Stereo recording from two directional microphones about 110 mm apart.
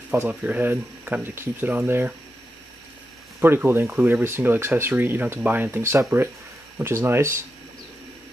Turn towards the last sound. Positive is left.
turn(degrees=-25)  # may be behind; listen again after turning